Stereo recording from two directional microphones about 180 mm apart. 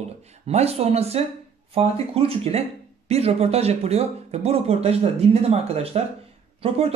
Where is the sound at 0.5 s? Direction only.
35° right (ahead or behind).